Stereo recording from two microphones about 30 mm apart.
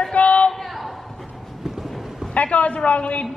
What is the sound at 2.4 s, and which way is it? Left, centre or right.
Speech, left.